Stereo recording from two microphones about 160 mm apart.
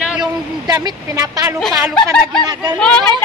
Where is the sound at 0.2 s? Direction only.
25° right (ahead or behind).